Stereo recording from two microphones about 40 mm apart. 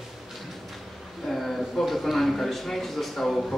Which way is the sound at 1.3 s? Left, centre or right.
Centre.